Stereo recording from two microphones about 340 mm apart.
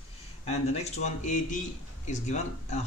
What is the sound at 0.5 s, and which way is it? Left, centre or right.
A man's voice, centre.